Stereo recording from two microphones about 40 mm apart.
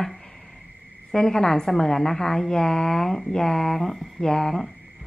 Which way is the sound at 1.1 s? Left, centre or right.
Centre.